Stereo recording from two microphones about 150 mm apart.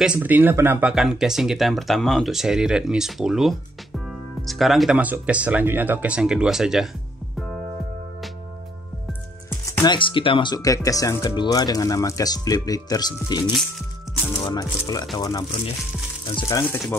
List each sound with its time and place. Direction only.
0.0 s speech: 10° right (ahead or behind)
9.7 s speech: 30° left (ahead or behind)
16.4 s speech: 15° left (ahead or behind)